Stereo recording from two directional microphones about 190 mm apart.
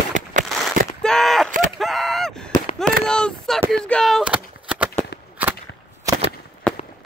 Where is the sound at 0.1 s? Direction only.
40° right (ahead or behind).